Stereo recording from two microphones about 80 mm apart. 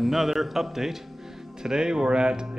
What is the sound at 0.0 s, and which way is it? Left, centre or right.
A man's voice, centre.